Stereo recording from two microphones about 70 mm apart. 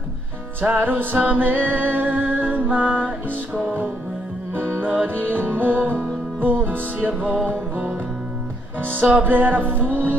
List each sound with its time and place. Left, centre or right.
0.6 s music: right
4.6 s music: right
9.0 s music: right